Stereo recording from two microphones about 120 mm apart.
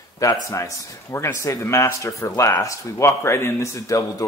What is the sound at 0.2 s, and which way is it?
Speech, 25° left (ahead or behind).